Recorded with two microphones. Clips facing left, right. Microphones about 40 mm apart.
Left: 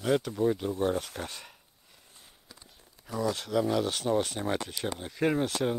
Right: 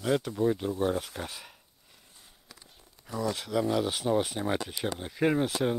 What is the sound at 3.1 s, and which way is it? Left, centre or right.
Speech, centre.